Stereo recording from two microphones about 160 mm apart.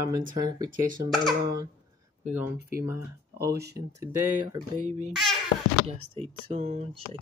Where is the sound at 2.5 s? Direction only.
70° right (ahead or behind).